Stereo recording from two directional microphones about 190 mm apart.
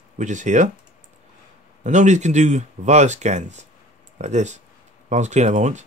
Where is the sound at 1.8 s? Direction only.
40° right (ahead or behind).